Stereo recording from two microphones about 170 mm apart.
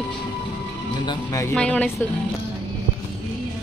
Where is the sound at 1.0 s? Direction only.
20° left (ahead or behind).